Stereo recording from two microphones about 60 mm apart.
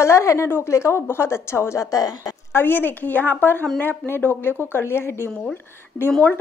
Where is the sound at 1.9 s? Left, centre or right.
Left.